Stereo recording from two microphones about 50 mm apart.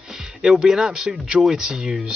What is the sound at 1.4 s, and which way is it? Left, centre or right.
Speech, centre.